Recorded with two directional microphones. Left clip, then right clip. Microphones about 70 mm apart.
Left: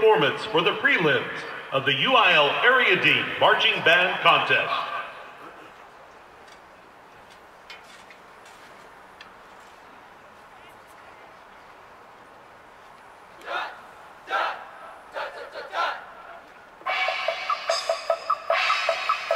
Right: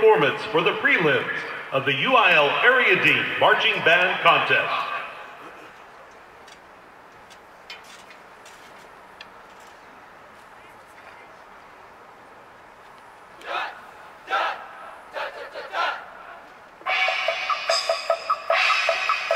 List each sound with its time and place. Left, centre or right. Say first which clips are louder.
0.0 s a man's voice: right 2 dB; left
13.5 s a sound: right 1 dB; centre
15.3 s battle cry: even; centre
16.8 s music: right 3 dB; centre